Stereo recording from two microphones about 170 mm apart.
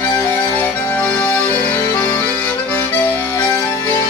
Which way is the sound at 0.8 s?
10° left (ahead or behind).